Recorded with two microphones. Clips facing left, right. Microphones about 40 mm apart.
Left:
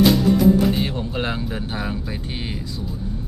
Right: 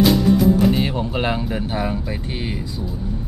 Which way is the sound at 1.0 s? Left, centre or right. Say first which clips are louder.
Right 3 dB; centre.